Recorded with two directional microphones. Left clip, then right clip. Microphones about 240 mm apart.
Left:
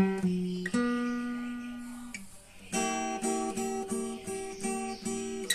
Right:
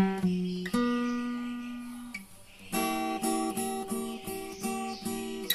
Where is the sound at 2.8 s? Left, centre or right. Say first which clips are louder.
Right 2 dB; right.